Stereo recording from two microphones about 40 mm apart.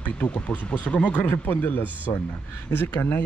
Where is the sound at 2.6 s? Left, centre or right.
Left.